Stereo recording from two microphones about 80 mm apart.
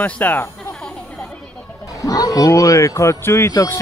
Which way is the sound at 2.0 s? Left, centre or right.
Left.